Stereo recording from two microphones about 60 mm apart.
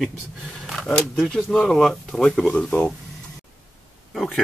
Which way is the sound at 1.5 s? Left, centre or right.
Centre.